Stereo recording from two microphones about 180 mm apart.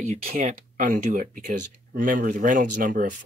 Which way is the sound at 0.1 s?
50° right (ahead or behind).